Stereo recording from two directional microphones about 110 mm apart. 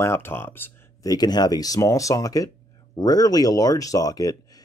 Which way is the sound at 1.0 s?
35° left (ahead or behind).